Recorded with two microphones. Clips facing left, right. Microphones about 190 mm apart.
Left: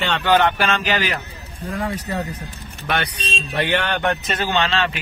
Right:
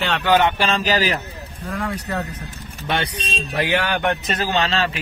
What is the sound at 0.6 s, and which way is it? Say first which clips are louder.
Speech: right 1 dB; 35° right (ahead or behind).